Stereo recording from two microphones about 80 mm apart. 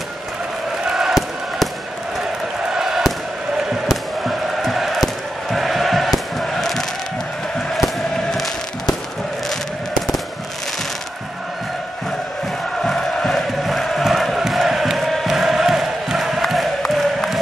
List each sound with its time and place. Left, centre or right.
0.8 s music: centre
2.7 s a sound: centre
3.5 s music: centre
12.8 s chant: centre